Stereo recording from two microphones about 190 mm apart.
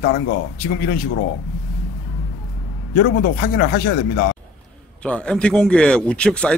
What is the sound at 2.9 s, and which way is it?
Speech, 55° left (ahead or behind).